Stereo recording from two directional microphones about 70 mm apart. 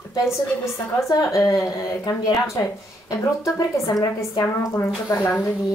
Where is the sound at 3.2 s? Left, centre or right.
Left.